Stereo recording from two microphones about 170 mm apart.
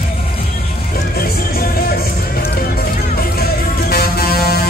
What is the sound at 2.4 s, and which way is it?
Music, 65° left (ahead or behind).